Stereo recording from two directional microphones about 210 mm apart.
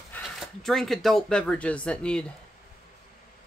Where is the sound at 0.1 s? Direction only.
Centre (ahead or behind).